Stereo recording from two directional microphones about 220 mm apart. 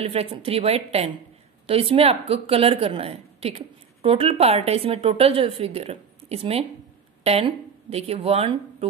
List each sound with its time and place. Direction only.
0.0 s a woman's voice: 25° right (ahead or behind)